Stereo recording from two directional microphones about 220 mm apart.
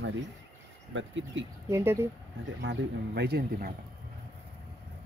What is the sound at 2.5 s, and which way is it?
Speech, 50° right (ahead or behind).